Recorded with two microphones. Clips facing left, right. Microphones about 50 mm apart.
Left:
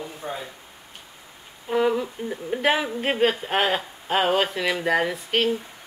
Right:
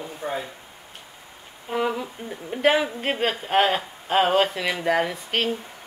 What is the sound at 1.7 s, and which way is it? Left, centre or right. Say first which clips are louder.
Speech: left 3 dB; centre.